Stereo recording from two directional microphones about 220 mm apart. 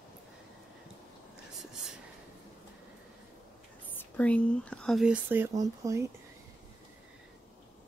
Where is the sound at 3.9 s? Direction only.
5° left (ahead or behind); by 6.0 s 15° right (ahead or behind).